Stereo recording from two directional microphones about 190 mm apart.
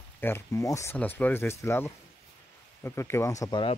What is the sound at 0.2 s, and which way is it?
Speech, 15° left (ahead or behind).